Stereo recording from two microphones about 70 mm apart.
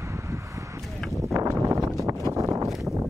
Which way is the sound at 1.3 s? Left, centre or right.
Right.